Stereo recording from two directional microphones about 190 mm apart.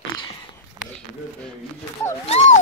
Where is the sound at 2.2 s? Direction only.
35° left (ahead or behind).